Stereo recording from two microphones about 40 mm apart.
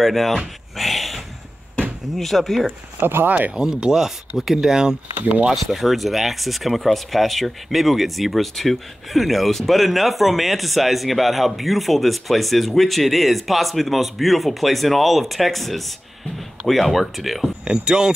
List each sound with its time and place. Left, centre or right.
0.0 s speech: centre
0.7 s a sound: centre
2.1 s speech: centre
3.0 s speech: right
3.3 s speech: right
3.5 s speech: centre
5.5 s speech: centre
17.6 s speech: right